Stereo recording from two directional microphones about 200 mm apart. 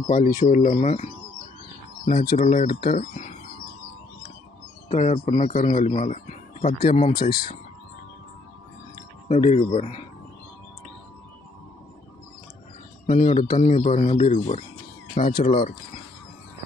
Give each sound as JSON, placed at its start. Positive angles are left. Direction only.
{"t": 0.0, "sound": "speech", "side_deg": 40}
{"t": 4.8, "sound": "a man's voice", "side_deg": 35}
{"t": 7.2, "sound": "speech", "side_deg": 20}
{"t": 9.3, "sound": "speech", "side_deg": 35}
{"t": 13.0, "sound": "speech", "side_deg": 35}